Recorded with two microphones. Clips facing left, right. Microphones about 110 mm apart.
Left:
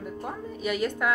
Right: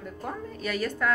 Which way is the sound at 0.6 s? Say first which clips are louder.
Left 2 dB; 15° left (ahead or behind).